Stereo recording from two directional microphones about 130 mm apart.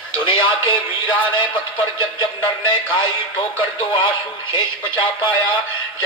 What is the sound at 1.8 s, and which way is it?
Speech, 40° left (ahead or behind).